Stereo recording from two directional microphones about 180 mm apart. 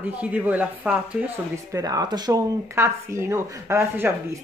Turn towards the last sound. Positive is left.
turn(degrees=-15)  # may be behind; listen again after turning